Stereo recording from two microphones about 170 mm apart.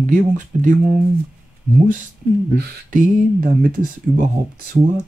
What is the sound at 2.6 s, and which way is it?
Speech, 50° right (ahead or behind).